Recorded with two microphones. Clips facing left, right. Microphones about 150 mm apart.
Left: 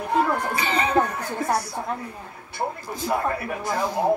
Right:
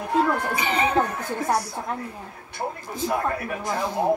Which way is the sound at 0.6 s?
15° right (ahead or behind).